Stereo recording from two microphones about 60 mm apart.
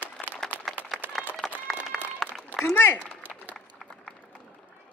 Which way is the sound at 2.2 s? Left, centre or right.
Centre.